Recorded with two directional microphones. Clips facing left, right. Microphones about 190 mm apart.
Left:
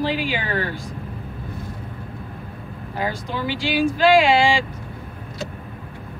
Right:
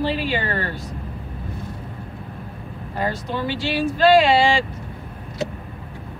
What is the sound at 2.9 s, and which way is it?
Speech, centre (ahead or behind).